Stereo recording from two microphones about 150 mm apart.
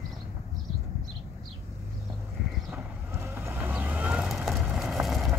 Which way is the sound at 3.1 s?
15° right (ahead or behind).